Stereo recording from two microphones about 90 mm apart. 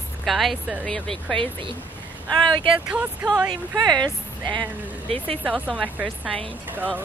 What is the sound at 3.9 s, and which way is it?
Speech, 50° right (ahead or behind).